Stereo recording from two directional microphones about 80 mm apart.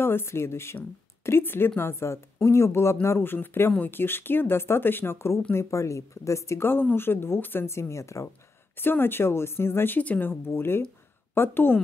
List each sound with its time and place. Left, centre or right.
0.0 s speech: left
8.7 s speech: left